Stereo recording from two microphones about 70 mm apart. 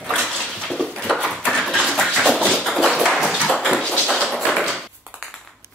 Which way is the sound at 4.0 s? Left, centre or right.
Centre.